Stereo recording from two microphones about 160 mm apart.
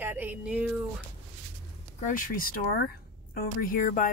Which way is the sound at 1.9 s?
55° left (ahead or behind).